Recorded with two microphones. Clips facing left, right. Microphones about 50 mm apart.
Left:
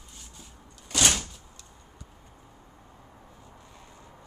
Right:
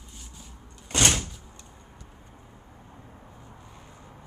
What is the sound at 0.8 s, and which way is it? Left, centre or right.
Door, right.